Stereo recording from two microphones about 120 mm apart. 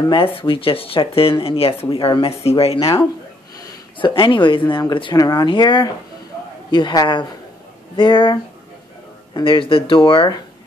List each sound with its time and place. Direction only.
0.1 s speech: 50° left (ahead or behind)
4.0 s speech: 45° left (ahead or behind)